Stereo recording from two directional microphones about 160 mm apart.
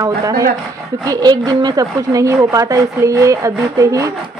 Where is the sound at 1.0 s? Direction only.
25° right (ahead or behind).